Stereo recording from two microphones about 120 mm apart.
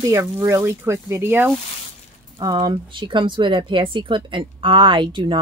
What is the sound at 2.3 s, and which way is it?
Speech, 35° right (ahead or behind).